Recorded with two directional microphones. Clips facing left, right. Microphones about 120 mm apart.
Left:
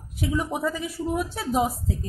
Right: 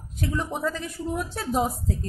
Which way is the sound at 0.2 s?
10° left (ahead or behind).